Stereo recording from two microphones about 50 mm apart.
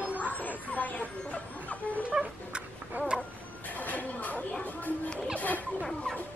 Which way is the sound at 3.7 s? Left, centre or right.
Left.